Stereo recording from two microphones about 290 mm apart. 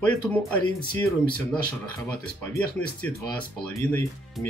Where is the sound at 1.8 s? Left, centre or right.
Centre.